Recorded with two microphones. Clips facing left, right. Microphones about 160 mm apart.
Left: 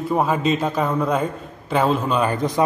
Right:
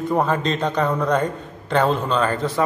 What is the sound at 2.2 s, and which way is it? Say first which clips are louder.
Speech: left 1 dB; 15° left (ahead or behind).